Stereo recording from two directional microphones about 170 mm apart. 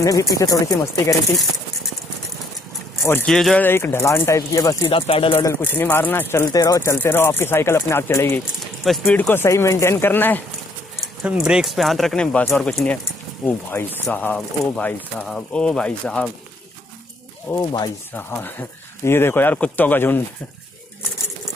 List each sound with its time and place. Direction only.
0.0 s speech: 20° left (ahead or behind)
3.1 s speech: 5° left (ahead or behind)
3.6 s speech: 15° left (ahead or behind)
4.8 s speech: 35° left (ahead or behind)
5.4 s speech: 15° left (ahead or behind)
11.2 s speech: 5° right (ahead or behind)
17.5 s speech: 20° left (ahead or behind)
18.1 s speech: 10° left (ahead or behind)